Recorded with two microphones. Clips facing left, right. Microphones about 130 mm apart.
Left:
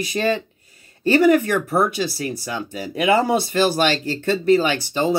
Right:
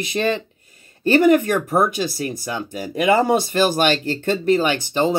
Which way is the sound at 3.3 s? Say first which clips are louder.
Right 1 dB; 45° right (ahead or behind).